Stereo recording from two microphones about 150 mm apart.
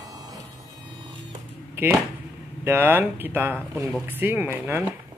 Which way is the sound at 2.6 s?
15° right (ahead or behind).